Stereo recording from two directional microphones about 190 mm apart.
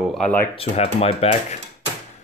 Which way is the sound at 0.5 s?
30° left (ahead or behind).